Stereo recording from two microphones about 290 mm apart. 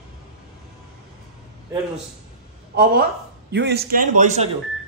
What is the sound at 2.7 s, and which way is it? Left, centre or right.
A man's voice, right.